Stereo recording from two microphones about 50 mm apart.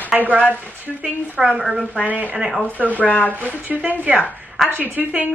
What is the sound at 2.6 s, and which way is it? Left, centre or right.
Speech, left.